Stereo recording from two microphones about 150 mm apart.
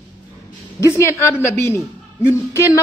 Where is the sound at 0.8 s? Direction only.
20° left (ahead or behind).